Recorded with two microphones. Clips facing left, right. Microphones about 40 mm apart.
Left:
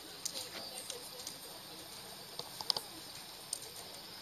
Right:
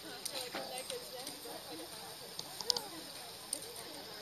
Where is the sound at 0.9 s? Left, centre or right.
Centre.